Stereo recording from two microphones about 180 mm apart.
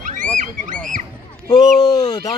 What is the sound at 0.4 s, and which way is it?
Speech, 45° right (ahead or behind).